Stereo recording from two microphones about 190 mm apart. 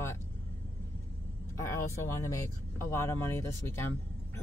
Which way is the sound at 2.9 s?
15° left (ahead or behind).